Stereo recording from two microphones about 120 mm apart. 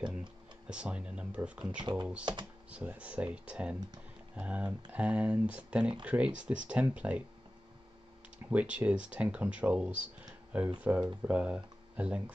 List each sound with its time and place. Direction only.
0.7 s speech: 10° right (ahead or behind)
1.8 s speech: 40° right (ahead or behind)
2.7 s speech: 10° right (ahead or behind)
8.5 s speech: 10° right (ahead or behind)